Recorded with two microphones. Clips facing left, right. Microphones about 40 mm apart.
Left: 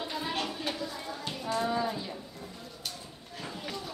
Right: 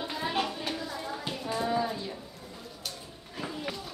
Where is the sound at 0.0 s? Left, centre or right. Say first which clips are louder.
Right 3 dB; centre.